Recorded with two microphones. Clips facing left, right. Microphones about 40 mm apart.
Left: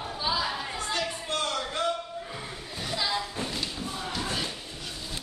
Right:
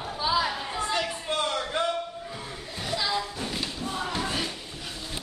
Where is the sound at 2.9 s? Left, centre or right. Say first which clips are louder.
Right 2 dB; centre.